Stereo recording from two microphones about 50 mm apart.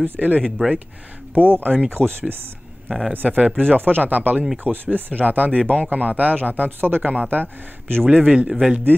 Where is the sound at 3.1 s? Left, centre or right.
Right.